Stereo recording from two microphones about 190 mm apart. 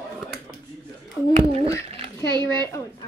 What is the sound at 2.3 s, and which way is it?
Speech, 20° right (ahead or behind).